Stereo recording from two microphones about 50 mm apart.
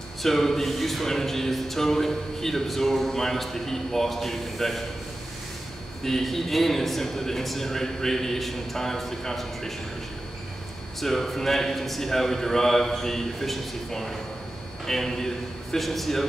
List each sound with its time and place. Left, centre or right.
0.2 s speech: centre
6.0 s speech: centre
11.0 s speech: centre